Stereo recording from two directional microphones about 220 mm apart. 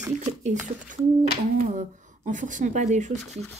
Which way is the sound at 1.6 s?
35° right (ahead or behind).